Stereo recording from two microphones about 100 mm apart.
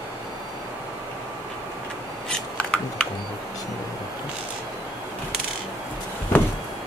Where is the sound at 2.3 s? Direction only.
10° left (ahead or behind).